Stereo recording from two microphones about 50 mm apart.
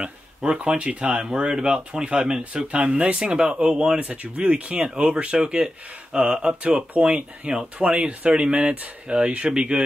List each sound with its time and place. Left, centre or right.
0.0 s speech: right
4.0 s speech: right